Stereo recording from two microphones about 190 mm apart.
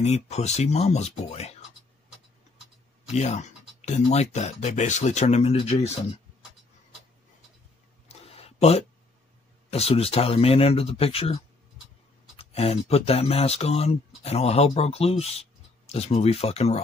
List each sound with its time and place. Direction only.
0.0 s speech: 35° left (ahead or behind)
3.1 s speech: 35° left (ahead or behind)
8.1 s a sound: 30° left (ahead or behind)
9.7 s speech: 30° left (ahead or behind)
12.4 s speech: 30° left (ahead or behind)